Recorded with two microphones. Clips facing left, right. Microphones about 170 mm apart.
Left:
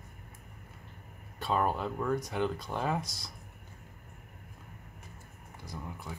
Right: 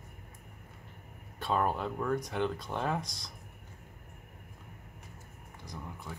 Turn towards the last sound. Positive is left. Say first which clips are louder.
# left 1 dB
turn(degrees=5)  # may be behind; listen again after turning